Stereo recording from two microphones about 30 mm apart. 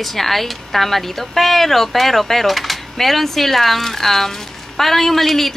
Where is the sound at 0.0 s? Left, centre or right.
Centre.